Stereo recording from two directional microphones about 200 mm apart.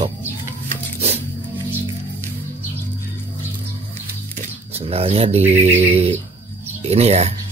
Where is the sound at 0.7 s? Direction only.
30° right (ahead or behind).